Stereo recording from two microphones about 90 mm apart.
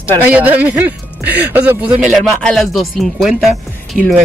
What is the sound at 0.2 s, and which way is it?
Speech, 15° right (ahead or behind).